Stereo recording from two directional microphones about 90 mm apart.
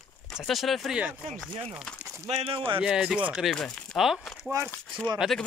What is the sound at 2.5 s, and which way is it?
Speech, 90° right.